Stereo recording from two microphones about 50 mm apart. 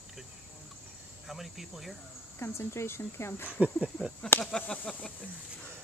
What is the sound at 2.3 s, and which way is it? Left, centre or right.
Speech, left.